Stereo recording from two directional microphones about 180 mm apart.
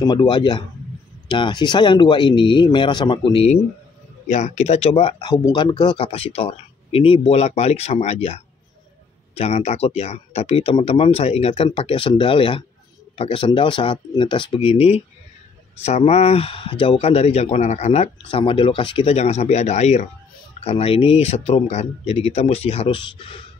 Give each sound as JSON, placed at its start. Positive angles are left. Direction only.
{"t": 0.0, "sound": "speech", "side_deg": 25}
{"t": 4.3, "sound": "speech", "side_deg": 40}